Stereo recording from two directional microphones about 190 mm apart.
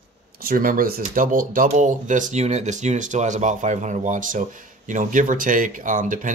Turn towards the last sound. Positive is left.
turn(degrees=-45)  # may be behind; listen again after turning